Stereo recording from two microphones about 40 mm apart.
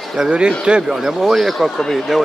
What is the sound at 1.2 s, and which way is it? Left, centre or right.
Speech, centre.